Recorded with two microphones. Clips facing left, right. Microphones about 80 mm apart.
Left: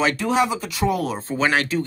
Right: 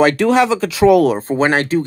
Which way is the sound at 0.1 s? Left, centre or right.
Right.